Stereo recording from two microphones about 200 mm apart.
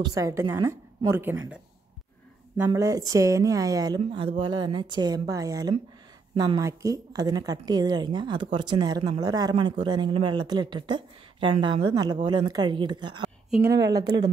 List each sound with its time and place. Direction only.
0.0 s a woman's voice: 15° right (ahead or behind)